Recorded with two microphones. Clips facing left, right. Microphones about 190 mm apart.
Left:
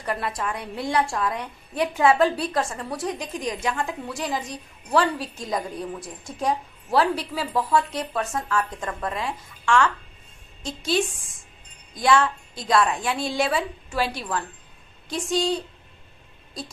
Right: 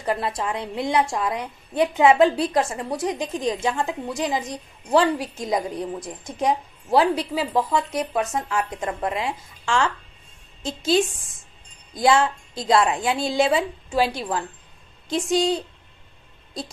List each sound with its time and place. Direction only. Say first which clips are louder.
0.0 s a woman's voice: right 3 dB; 25° right (ahead or behind)
11.9 s a woman's voice: right 2 dB; 25° right (ahead or behind)